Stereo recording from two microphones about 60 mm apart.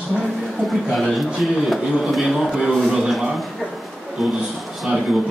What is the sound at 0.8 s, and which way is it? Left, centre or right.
A man's voice, centre.